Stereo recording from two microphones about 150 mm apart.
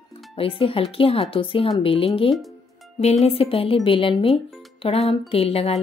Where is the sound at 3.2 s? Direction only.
40° left (ahead or behind).